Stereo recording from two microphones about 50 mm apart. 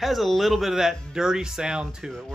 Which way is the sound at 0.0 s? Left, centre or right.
Centre.